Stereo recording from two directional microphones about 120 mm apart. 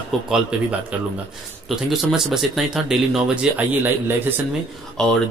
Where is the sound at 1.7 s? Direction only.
5° right (ahead or behind).